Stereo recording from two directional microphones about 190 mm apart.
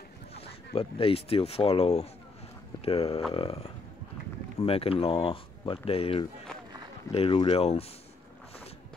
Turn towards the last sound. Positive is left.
turn(degrees=30)  # may be behind; listen again after turning